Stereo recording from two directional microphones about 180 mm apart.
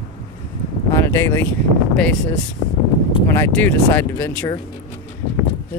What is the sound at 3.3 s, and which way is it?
Speech, 10° left (ahead or behind).